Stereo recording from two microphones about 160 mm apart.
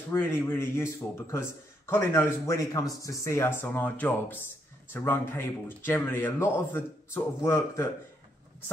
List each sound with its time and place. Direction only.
0.1 s speech: 15° left (ahead or behind)